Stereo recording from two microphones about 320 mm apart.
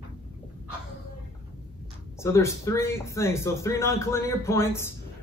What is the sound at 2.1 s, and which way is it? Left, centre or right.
Speech, centre.